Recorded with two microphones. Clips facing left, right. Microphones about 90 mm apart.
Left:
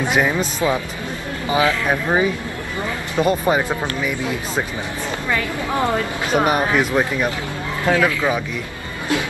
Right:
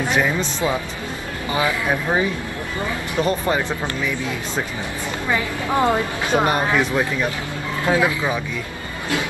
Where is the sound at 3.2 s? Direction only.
15° left (ahead or behind).